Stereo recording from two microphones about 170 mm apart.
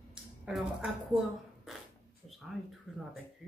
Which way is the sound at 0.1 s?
Centre (ahead or behind).